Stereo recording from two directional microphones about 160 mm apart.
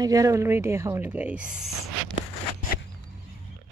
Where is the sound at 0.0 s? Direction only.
20° right (ahead or behind).